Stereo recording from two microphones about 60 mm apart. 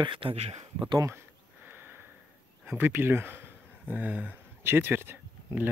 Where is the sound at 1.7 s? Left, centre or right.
Right.